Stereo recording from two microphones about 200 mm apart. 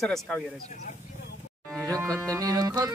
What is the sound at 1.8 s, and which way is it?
Music, 15° right (ahead or behind).